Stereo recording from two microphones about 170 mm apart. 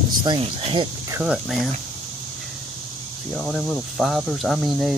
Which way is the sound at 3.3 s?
5° left (ahead or behind).